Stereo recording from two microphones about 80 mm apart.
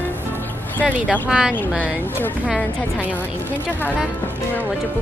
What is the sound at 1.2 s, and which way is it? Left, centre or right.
Speech, centre.